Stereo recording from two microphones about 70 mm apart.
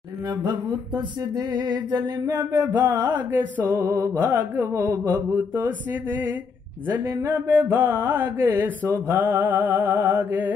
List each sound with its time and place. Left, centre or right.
0.4 s music: right
2.3 s a sound: right
2.7 s music: right
3.3 s mantra: right
3.8 s music: right
4.2 s mantra: right
4.7 s music: right
7.2 s mantra: right